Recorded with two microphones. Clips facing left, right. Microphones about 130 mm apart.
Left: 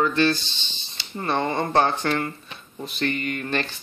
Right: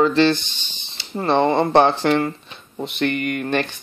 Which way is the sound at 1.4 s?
30° right (ahead or behind).